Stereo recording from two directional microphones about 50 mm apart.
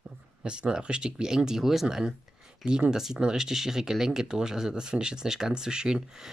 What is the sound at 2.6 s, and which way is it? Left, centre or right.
Speech, centre.